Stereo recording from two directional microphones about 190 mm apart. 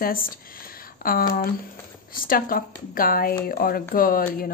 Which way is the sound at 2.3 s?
50° left (ahead or behind).